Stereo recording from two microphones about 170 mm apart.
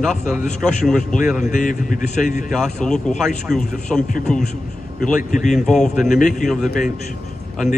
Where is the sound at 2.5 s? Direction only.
5° left (ahead or behind).